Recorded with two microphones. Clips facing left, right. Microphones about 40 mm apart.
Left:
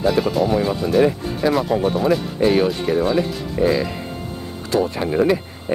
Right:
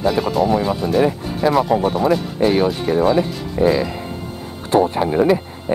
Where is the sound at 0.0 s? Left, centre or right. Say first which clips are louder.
Right 1 dB; centre.